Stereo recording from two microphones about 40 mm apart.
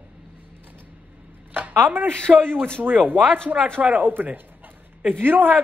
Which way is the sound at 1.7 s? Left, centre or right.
Right.